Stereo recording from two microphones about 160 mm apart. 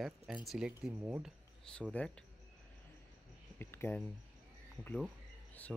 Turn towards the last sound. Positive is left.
turn(degrees=10)  # may be behind; listen again after turning